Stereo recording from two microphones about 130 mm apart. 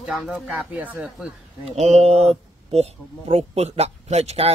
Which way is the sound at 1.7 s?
55° right (ahead or behind).